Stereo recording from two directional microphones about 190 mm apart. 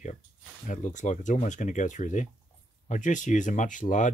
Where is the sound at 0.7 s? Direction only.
40° left (ahead or behind).